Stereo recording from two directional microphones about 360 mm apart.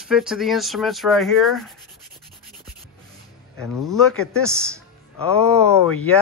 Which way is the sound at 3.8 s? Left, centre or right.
Centre.